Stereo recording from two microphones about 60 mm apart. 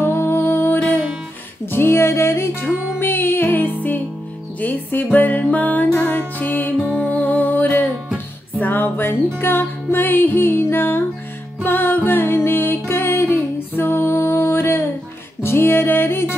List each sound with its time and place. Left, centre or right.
0.0 s music: left